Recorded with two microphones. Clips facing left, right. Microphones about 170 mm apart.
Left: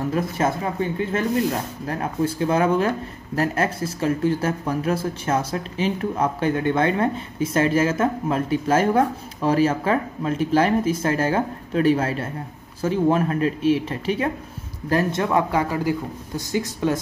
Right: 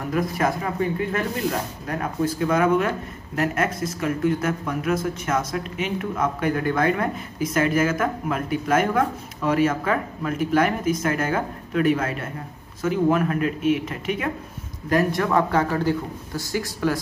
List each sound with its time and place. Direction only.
0.1 s speech: 25° left (ahead or behind)